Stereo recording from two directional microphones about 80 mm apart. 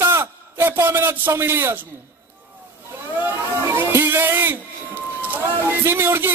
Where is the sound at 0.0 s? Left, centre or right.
Right.